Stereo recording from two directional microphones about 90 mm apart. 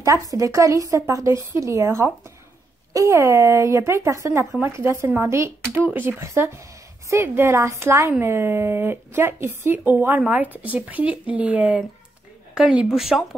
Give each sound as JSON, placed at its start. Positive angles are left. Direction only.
{"t": 0.0, "sound": "speech", "side_deg": -40}